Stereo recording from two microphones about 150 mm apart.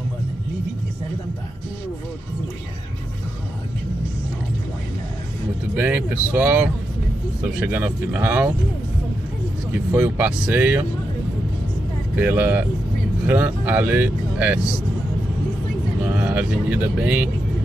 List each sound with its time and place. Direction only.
5.8 s speech: 10° right (ahead or behind)
9.7 s speech: 10° right (ahead or behind)
12.2 s speech: 15° right (ahead or behind)
16.2 s speech: 10° right (ahead or behind)